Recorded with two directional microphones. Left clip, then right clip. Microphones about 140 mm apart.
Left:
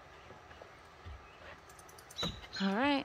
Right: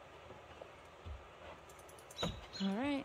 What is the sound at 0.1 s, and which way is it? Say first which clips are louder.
Vehicle: left 1 dB; 90° right.